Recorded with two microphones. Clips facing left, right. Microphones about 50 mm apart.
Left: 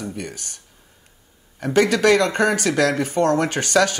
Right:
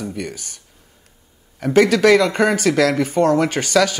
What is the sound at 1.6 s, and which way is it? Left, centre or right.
A man's voice, right.